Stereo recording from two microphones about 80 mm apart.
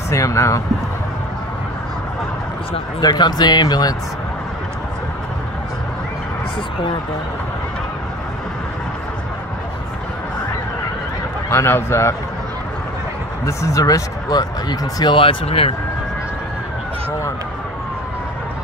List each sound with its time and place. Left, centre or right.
0.1 s speech: left
3.0 s speech: left
11.5 s speech: left
13.5 s speech: left